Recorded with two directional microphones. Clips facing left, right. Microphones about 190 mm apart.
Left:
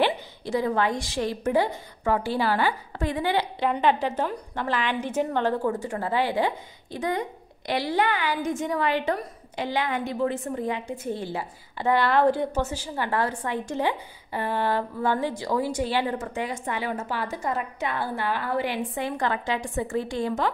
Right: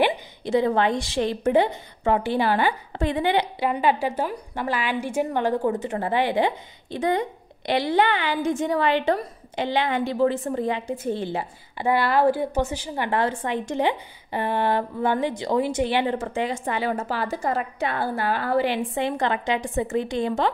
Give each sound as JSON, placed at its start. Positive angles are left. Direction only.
{"t": 0.5, "sound": "a woman's voice", "side_deg": -25}
{"t": 3.5, "sound": "a woman's voice", "side_deg": -10}
{"t": 11.8, "sound": "a woman's voice", "side_deg": -10}